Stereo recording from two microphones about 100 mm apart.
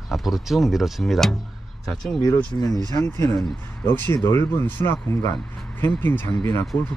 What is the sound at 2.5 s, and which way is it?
Speech, 25° left (ahead or behind).